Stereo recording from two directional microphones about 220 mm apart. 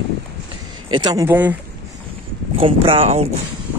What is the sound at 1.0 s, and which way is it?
Speech, 15° right (ahead or behind).